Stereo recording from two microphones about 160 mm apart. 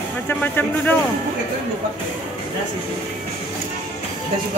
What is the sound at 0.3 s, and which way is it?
Speech, 10° left (ahead or behind).